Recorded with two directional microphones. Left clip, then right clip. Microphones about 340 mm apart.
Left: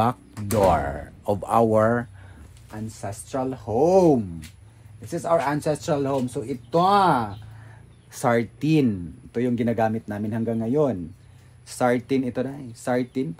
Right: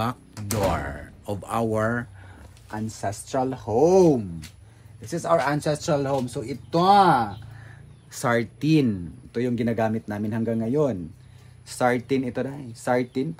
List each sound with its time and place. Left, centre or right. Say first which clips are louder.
0.0 s speech: left 6 dB; centre
2.7 s speech: right 4 dB; centre